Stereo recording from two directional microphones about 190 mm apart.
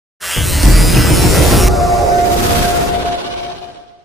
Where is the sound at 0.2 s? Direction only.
Centre (ahead or behind).